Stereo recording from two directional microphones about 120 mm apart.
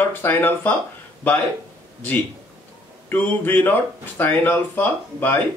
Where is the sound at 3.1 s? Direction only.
15° left (ahead or behind).